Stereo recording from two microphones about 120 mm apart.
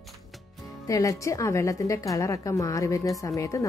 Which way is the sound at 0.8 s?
30° left (ahead or behind).